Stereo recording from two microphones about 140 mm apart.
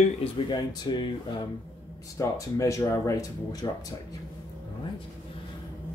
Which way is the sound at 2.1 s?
20° left (ahead or behind).